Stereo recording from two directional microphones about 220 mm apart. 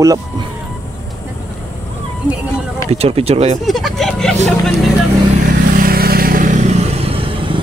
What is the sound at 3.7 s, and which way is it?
Vehicle, centre (ahead or behind).